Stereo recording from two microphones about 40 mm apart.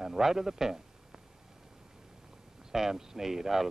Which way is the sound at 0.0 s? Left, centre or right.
Centre.